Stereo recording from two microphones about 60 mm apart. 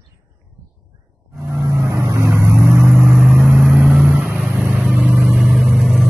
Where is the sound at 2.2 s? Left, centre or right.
Right.